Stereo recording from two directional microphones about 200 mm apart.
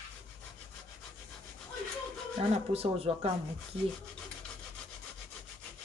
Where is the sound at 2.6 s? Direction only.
30° right (ahead or behind).